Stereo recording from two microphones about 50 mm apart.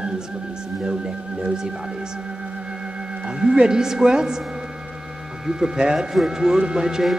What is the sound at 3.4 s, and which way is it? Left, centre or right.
Speech, centre.